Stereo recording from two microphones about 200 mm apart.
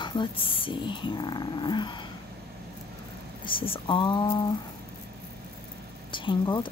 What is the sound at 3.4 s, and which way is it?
Speech, 25° left (ahead or behind).